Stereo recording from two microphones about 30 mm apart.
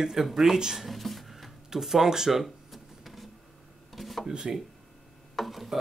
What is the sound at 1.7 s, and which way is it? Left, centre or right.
Speech, centre.